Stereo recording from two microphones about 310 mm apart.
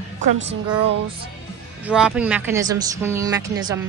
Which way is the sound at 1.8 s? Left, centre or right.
Centre.